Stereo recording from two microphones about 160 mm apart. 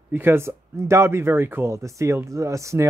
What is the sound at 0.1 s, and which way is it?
Speech, 15° right (ahead or behind).